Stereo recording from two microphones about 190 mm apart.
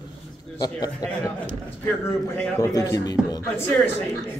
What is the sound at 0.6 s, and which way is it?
Speech, 20° left (ahead or behind).